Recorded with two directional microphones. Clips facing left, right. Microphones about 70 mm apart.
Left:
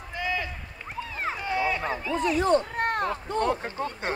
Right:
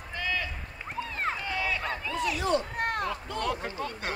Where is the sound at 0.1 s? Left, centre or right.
Centre.